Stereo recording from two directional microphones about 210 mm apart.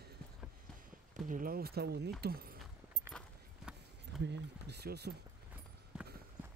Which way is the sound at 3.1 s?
5° left (ahead or behind).